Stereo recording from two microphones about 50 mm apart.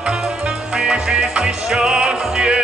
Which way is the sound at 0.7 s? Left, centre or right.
Right.